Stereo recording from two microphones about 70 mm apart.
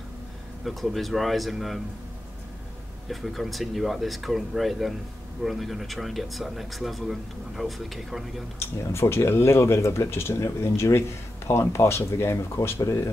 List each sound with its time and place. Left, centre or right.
0.7 s speech: centre
3.1 s speech: centre
8.5 s speech: left